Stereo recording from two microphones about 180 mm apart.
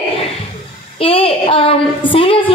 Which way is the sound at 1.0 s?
30° left (ahead or behind).